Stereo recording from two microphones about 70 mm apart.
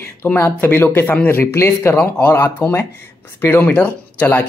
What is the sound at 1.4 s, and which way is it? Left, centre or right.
Speech, left.